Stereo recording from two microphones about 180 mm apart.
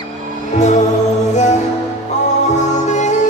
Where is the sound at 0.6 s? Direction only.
40° left (ahead or behind).